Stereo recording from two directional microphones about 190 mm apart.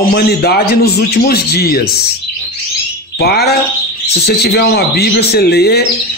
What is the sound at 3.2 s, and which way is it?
A man's voice, 55° left (ahead or behind).